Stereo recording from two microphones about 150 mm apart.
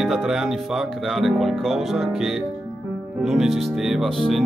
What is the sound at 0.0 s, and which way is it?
Speech, centre (ahead or behind).